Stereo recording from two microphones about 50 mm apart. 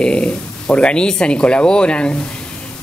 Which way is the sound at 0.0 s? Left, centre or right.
Left.